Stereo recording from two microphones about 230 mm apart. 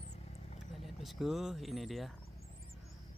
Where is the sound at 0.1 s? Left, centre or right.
Left.